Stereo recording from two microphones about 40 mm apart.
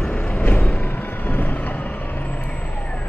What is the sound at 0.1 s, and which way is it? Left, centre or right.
Vehicle, left.